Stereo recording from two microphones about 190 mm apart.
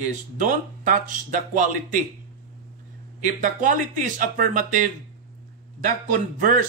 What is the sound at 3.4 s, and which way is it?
Speech, 45° right (ahead or behind).